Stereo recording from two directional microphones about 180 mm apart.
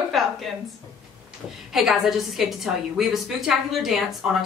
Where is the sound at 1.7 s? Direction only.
Centre (ahead or behind).